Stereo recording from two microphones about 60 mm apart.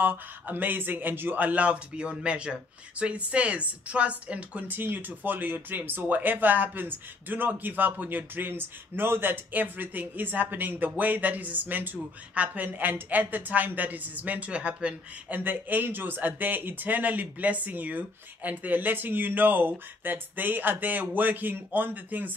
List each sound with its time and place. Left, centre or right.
0.0 s speech: right
15.3 s speech: right